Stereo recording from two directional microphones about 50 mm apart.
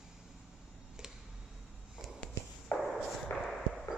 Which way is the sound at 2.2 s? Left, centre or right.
Centre.